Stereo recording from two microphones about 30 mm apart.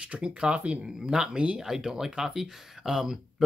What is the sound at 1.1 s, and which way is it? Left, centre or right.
Speech, right.